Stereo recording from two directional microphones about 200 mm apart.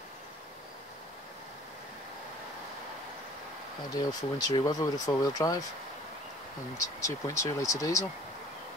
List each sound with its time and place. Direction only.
3.9 s speech: 20° left (ahead or behind)
7.0 s speech: 15° left (ahead or behind)